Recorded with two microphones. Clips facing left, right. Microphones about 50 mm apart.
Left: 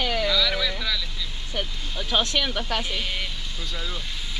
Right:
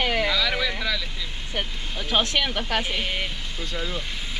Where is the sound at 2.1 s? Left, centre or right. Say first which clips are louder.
Right 1 dB; right.